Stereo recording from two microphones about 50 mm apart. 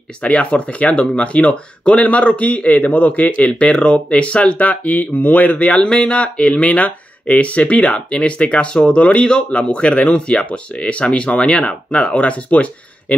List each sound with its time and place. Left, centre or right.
0.2 s speech: left